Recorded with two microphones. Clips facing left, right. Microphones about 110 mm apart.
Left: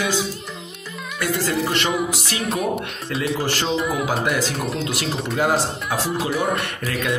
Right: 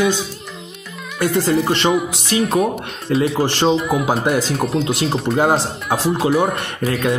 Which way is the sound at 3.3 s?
35° right (ahead or behind).